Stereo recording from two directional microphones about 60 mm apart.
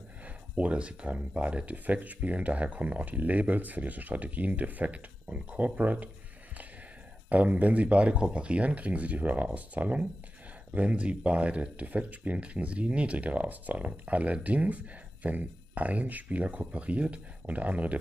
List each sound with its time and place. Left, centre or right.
0.6 s speech: right
7.2 s speech: right